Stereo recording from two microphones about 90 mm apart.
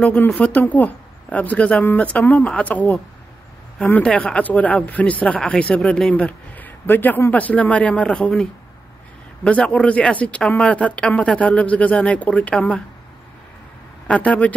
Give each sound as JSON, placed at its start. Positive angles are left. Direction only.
{"t": 0.0, "sound": "speech", "side_deg": 15}
{"t": 14.0, "sound": "speech", "side_deg": 15}